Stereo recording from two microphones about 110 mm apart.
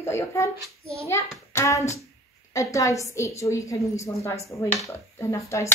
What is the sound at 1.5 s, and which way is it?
Hands, 25° left (ahead or behind).